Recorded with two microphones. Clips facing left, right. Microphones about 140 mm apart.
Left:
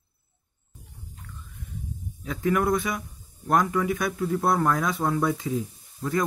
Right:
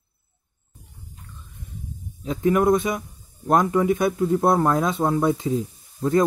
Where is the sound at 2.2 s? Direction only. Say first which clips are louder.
Right 5 dB; 25° right (ahead or behind).